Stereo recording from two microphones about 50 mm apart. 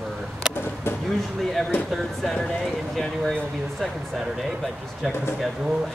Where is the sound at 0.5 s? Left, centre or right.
Left.